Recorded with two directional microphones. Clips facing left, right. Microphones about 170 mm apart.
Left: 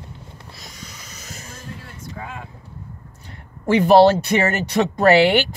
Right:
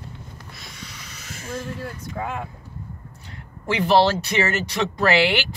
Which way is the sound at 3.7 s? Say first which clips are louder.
Left 6 dB; 50° left (ahead or behind).